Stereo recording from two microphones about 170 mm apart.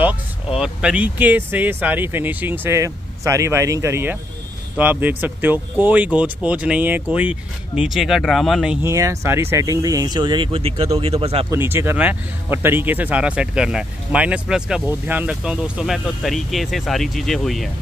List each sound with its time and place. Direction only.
0.0 s speech: 5° right (ahead or behind)
8.8 s speech: 20° right (ahead or behind); by 11.4 s 35° right (ahead or behind)
11.5 s speech: 15° right (ahead or behind)